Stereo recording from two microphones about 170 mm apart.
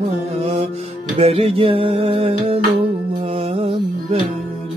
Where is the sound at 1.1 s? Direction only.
35° right (ahead or behind).